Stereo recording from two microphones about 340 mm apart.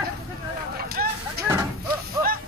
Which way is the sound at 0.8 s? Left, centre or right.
Right.